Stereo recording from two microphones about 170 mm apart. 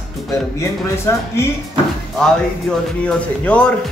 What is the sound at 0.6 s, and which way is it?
Speech, 15° left (ahead or behind).